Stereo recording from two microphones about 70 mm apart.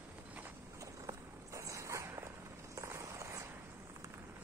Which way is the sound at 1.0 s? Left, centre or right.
Right.